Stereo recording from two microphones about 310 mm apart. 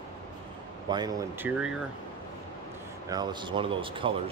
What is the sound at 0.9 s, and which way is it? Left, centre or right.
Speech, centre.